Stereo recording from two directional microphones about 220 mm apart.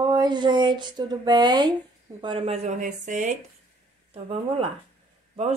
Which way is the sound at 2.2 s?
25° right (ahead or behind).